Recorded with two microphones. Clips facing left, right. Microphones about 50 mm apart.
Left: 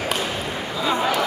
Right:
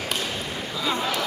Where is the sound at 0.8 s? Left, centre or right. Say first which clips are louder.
Left 5 dB; centre.